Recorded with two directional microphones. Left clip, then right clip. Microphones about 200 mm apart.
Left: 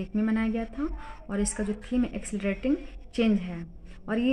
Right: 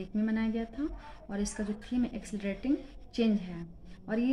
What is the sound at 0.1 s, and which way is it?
Speech, 45° left (ahead or behind).